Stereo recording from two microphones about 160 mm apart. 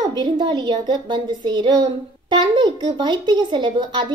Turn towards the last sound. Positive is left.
turn(degrees=-30)  # may be behind; listen again after turning